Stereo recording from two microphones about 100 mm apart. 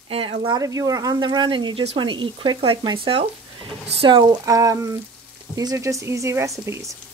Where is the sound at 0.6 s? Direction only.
35° right (ahead or behind); by 2.8 s 60° right (ahead or behind).